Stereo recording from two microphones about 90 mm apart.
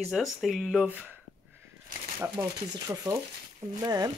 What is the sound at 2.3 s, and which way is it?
Speech, 40° right (ahead or behind).